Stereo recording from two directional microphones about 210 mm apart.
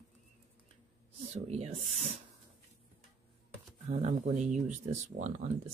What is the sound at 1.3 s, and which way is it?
Speech, 30° right (ahead or behind).